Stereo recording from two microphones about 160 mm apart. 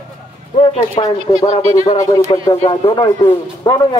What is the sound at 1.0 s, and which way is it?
A man's voice, 30° left (ahead or behind).